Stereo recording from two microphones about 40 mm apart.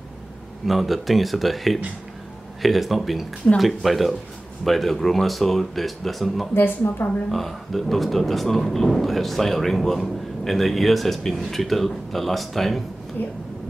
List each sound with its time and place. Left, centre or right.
0.7 s speech: centre
6.5 s a woman's voice: left
7.2 s speech: centre
13.2 s speech: left